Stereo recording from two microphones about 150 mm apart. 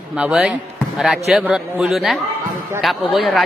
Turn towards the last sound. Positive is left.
turn(degrees=0)  # may be behind; listen again after turning